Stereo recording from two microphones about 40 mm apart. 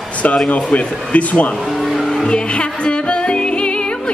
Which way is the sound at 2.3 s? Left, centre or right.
Left.